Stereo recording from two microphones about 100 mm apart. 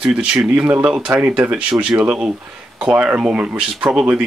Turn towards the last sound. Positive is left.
turn(degrees=-10)  # may be behind; listen again after turning